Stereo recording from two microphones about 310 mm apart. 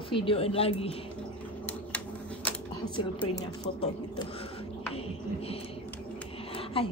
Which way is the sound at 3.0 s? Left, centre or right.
Centre.